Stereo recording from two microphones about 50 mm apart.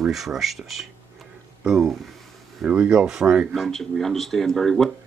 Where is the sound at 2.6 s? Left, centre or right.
Right.